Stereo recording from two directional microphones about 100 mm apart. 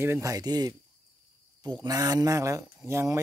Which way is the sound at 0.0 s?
30° right (ahead or behind).